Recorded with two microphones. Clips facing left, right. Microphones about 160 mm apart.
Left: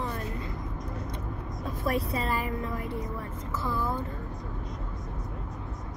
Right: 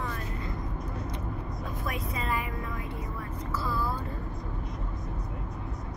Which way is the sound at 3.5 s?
20° left (ahead or behind).